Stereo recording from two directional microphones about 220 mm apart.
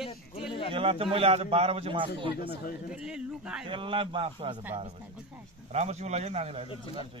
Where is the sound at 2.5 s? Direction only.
40° left (ahead or behind).